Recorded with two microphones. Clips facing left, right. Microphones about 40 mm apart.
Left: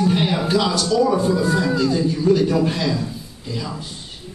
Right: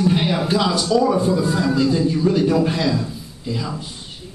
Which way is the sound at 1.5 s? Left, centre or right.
Centre.